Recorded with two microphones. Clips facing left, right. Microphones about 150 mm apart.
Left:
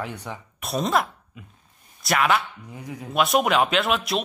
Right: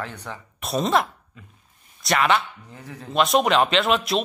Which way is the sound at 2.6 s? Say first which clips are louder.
Left 3 dB; 15° left (ahead or behind).